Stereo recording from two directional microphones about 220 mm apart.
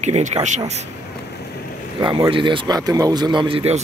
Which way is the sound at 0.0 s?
30° right (ahead or behind).